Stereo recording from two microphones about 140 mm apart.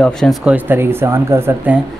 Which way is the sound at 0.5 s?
15° right (ahead or behind).